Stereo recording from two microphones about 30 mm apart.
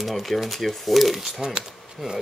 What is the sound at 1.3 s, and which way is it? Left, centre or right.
Speech, right.